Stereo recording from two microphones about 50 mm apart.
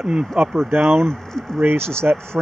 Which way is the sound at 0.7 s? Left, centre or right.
Right.